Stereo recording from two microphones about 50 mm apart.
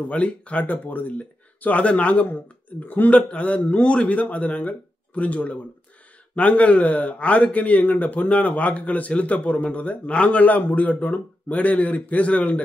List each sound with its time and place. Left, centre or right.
0.1 s a man's voice: left